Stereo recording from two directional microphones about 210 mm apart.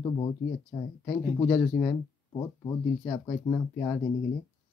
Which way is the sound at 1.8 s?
10° left (ahead or behind).